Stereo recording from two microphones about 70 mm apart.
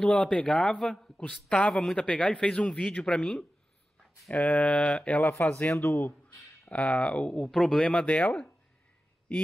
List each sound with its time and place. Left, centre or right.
0.0 s speech: centre
4.3 s speech: left
6.7 s speech: centre